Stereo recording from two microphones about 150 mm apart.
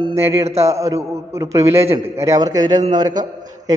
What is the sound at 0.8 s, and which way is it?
A man's voice, 20° right (ahead or behind).